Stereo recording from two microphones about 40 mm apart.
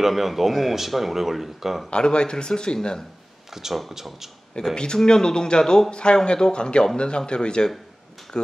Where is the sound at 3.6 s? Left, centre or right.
Centre.